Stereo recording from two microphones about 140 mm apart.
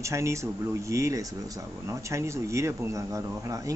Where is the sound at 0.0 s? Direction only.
20° right (ahead or behind).